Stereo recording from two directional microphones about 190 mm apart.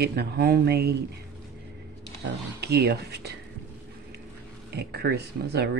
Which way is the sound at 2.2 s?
55° right (ahead or behind).